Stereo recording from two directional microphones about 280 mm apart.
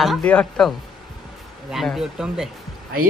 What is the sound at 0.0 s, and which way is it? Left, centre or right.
Speech, centre.